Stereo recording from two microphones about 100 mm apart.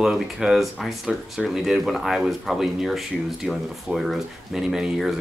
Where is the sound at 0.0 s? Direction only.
5° right (ahead or behind).